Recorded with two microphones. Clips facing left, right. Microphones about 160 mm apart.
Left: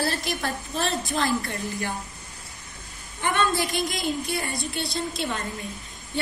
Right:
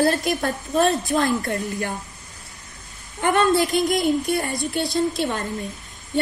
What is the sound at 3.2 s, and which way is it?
Speech, 50° right (ahead or behind).